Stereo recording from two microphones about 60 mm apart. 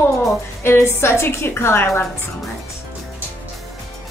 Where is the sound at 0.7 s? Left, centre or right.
Left.